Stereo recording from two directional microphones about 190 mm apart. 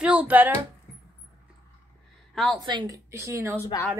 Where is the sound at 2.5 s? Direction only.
25° right (ahead or behind).